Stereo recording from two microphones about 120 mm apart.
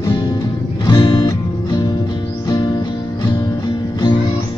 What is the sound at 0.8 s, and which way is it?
Music, 40° left (ahead or behind).